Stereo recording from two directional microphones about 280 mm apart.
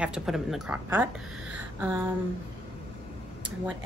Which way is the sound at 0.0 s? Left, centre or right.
Centre.